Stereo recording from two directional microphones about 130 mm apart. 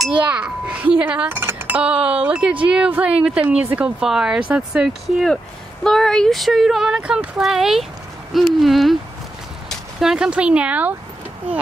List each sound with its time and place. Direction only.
0.0 s a child's voice: 5° right (ahead or behind)